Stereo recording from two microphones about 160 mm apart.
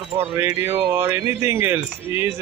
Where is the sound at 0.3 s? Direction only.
15° right (ahead or behind).